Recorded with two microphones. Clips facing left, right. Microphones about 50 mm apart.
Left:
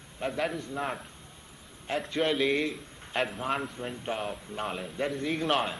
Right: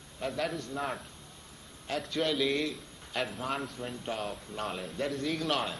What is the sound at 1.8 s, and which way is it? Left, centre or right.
A man's voice, left.